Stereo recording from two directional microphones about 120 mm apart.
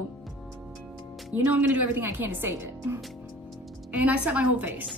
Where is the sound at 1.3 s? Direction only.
15° right (ahead or behind).